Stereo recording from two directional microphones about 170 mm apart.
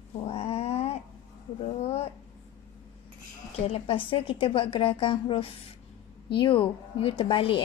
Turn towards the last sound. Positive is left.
turn(degrees=30)  # may be behind; listen again after turning